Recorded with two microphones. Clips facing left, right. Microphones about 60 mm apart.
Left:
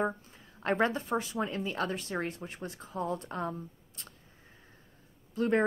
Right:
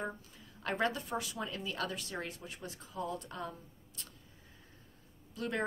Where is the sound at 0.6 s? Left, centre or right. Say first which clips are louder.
Left 5 dB; left.